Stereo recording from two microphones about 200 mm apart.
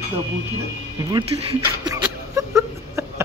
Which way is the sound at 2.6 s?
15° right (ahead or behind).